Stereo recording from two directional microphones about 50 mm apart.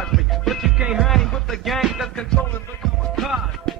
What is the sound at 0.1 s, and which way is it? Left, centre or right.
Music, centre.